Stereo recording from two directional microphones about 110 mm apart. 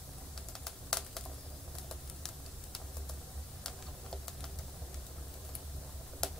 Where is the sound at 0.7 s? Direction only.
5° left (ahead or behind).